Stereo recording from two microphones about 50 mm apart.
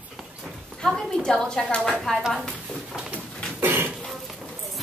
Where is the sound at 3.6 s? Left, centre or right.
Right.